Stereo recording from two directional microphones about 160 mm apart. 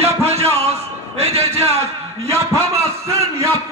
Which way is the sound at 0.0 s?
40° right (ahead or behind).